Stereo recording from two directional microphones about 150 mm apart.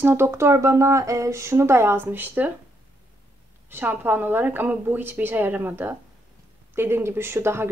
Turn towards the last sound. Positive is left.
turn(degrees=-15)  # may be behind; listen again after turning